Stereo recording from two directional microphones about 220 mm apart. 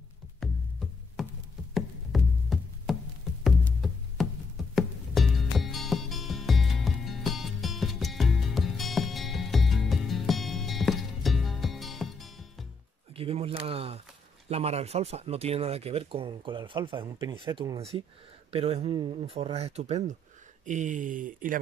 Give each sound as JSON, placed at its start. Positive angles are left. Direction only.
{"t": 0.4, "sound": "music", "side_deg": 0}
{"t": 13.1, "sound": "speech", "side_deg": -25}